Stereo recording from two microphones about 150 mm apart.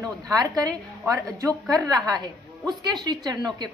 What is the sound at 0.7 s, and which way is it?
A woman's voice, 20° right (ahead or behind).